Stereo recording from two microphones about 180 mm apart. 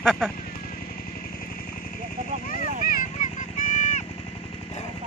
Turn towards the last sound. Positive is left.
turn(degrees=45)  # may be behind; listen again after turning